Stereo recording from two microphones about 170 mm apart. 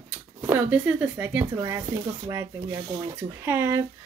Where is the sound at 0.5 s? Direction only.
10° right (ahead or behind).